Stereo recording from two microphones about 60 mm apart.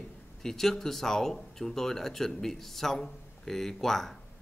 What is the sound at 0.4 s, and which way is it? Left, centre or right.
A man's voice, centre.